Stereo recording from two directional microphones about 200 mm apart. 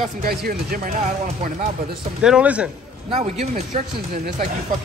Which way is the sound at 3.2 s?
35° right (ahead or behind).